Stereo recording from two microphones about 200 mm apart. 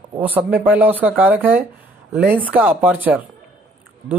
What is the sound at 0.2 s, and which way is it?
Speech, 10° right (ahead or behind).